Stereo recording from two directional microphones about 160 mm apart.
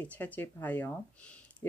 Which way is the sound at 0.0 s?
10° left (ahead or behind).